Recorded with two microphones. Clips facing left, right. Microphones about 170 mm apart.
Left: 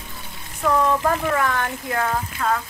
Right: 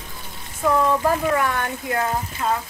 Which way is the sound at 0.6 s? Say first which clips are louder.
Right 1 dB; 15° right (ahead or behind).